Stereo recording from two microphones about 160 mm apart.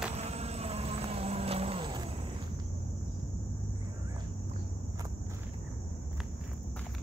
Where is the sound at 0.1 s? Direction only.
40° right (ahead or behind).